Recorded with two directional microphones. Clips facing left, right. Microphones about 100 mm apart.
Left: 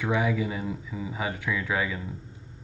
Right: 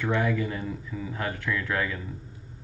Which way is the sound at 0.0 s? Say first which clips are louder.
Even; 10° left (ahead or behind).